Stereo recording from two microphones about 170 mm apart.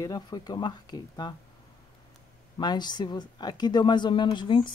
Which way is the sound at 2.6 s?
25° left (ahead or behind).